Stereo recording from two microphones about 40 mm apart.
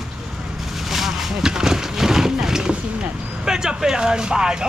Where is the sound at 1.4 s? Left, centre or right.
Centre.